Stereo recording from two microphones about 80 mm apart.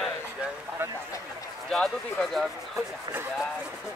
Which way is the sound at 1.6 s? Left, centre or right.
Centre.